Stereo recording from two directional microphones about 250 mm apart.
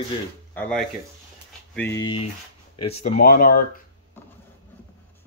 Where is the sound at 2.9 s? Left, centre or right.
Left.